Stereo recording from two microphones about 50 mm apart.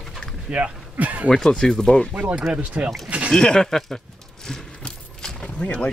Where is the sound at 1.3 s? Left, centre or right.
Centre.